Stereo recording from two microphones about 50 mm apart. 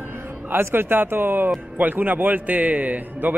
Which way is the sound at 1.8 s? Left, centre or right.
Right.